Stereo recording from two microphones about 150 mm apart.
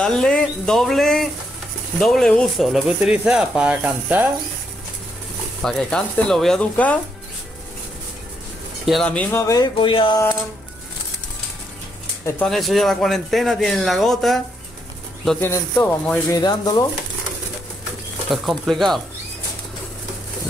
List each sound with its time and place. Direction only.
0.0 s speech: 5° left (ahead or behind)
5.6 s speech: 5° left (ahead or behind)
8.8 s speech: 5° left (ahead or behind)
9.4 s speech: 20° left (ahead or behind)
9.8 s speech: 35° left (ahead or behind)
12.4 s speech: centre (ahead or behind)
15.4 s speech: 15° left (ahead or behind)
16.3 s speech: 25° left (ahead or behind)
18.3 s speech: centre (ahead or behind)